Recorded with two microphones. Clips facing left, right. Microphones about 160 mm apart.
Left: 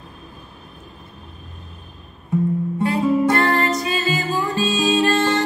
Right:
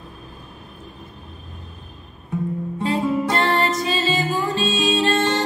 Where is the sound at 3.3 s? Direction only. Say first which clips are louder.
Left 1 dB; 25° right (ahead or behind).